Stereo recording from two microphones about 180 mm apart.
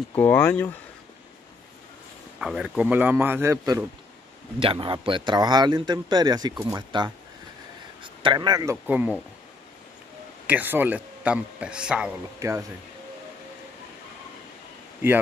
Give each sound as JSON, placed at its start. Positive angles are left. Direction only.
{"t": 0.1, "sound": "speech", "side_deg": 10}
{"t": 2.3, "sound": "a man's voice", "side_deg": -5}
{"t": 4.6, "sound": "a man's voice", "side_deg": -30}
{"t": 8.8, "sound": "a man's voice", "side_deg": -10}
{"t": 10.4, "sound": "a man's voice", "side_deg": -10}
{"t": 12.4, "sound": "speech", "side_deg": -15}